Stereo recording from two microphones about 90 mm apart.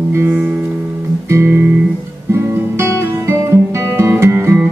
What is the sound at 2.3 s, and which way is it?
Guitar, 30° right (ahead or behind).